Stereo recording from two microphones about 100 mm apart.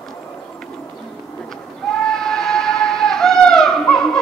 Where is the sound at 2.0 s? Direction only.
5° left (ahead or behind).